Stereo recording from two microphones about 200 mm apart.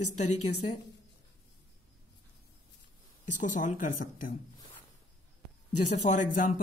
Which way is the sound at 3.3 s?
40° left (ahead or behind).